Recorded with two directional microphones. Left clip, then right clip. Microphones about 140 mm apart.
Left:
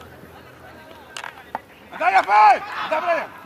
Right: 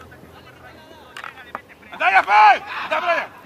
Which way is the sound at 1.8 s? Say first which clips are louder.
Right 1 dB; 20° right (ahead or behind).